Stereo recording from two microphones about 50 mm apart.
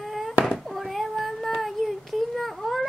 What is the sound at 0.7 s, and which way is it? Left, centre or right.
Child singing, centre.